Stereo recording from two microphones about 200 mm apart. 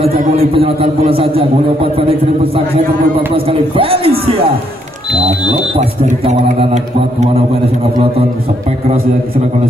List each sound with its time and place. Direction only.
0.0 s a man's voice: 30° right (ahead or behind)
5.8 s speech: 35° right (ahead or behind)